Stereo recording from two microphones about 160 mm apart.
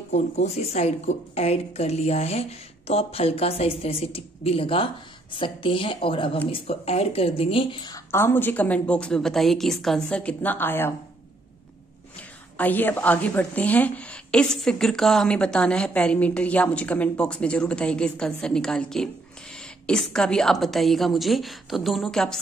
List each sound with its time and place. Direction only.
0.1 s speech: 45° left (ahead or behind)
8.1 s a woman's voice: 15° left (ahead or behind)
12.5 s a woman's voice: 10° left (ahead or behind)